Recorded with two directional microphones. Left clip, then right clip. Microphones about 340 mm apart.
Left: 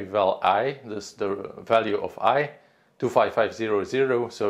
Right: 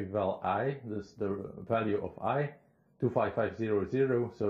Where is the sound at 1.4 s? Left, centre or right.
Centre.